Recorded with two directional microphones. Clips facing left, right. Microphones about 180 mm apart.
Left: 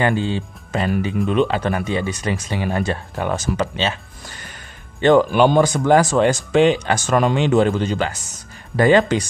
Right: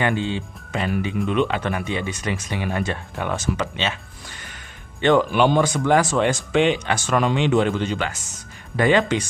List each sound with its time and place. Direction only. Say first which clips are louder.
0.0 s speech: left 3 dB; 35° left (ahead or behind)
5.0 s speech: left 4 dB; 40° left (ahead or behind)